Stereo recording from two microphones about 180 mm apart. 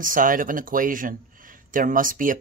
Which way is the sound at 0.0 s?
50° right (ahead or behind).